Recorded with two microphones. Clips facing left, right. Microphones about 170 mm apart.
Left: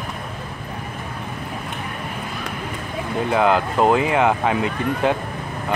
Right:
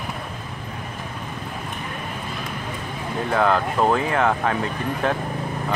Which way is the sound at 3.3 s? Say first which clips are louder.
Left 2 dB; 10° left (ahead or behind).